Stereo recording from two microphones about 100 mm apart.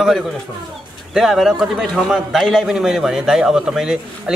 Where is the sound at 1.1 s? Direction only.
Centre (ahead or behind).